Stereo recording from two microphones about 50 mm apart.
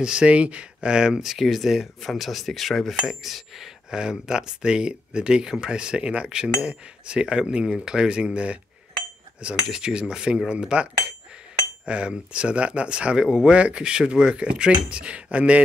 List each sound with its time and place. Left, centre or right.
0.0 s speech: centre
1.2 s speech: centre; by 15.6 s right